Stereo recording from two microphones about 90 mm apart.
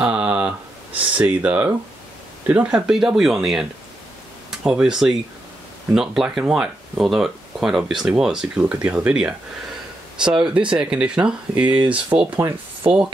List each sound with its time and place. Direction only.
0.0 s a sound: 10° right (ahead or behind)
1.1 s speech: 15° right (ahead or behind)
2.7 s speech: 5° right (ahead or behind)